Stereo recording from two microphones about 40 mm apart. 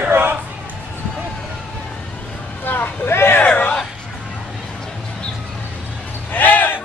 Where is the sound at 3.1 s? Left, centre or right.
Left.